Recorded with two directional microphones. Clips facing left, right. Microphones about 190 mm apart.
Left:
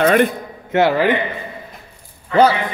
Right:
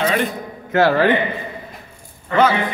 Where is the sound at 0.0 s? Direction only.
55° left (ahead or behind).